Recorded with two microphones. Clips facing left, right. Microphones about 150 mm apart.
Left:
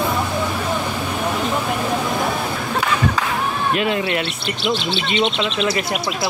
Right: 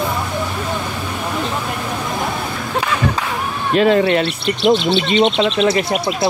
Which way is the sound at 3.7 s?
35° right (ahead or behind).